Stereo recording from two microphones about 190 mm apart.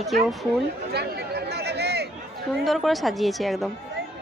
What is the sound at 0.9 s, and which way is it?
Chatter, 60° right (ahead or behind).